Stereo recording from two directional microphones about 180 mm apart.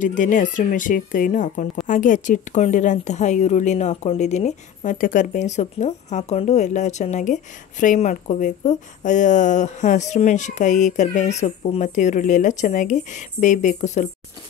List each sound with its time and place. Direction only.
0.0 s a woman's voice: 45° left (ahead or behind)